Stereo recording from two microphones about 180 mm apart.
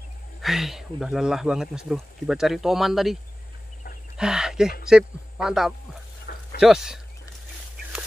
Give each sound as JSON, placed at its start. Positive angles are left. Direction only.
{"t": 0.4, "sound": "speech", "side_deg": 0}
{"t": 4.2, "sound": "speech", "side_deg": -5}
{"t": 6.3, "sound": "a sound", "side_deg": 60}
{"t": 6.6, "sound": "speech", "side_deg": -5}